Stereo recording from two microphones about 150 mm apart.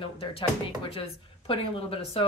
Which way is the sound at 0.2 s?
40° left (ahead or behind).